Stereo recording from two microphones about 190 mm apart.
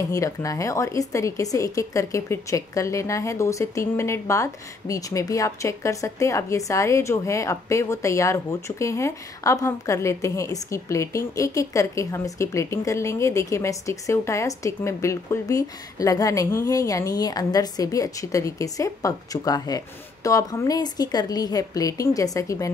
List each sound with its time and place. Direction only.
0.1 s a woman's voice: 15° left (ahead or behind)